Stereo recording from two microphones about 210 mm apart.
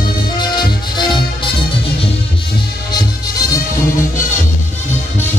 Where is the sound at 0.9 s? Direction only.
20° left (ahead or behind).